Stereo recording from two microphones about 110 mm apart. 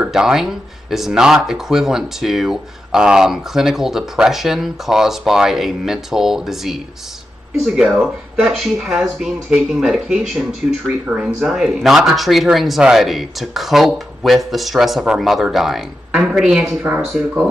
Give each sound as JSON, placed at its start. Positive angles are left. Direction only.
{"t": 0.0, "sound": "speech", "side_deg": -5}
{"t": 16.8, "sound": "speech", "side_deg": -15}